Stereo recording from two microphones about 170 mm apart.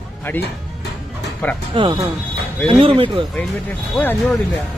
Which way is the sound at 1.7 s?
25° right (ahead or behind).